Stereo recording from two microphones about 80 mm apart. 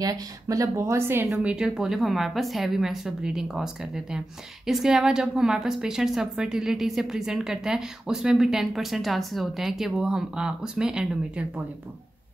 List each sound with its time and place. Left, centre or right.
0.0 s speech: right
1.4 s a woman's voice: centre